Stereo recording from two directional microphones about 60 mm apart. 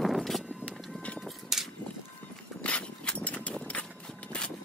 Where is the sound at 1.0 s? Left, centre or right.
Centre.